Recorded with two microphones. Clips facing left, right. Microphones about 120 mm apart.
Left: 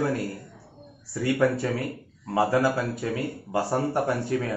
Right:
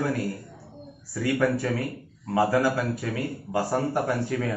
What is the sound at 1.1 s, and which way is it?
Speech, 20° left (ahead or behind).